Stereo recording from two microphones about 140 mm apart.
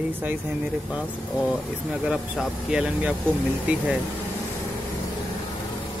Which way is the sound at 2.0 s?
5° right (ahead or behind).